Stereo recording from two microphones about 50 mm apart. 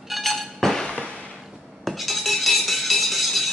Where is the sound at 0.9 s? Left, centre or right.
Left.